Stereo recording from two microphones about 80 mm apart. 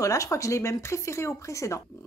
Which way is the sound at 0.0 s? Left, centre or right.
Left.